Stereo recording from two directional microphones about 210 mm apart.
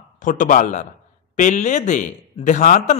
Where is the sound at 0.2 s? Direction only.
40° left (ahead or behind).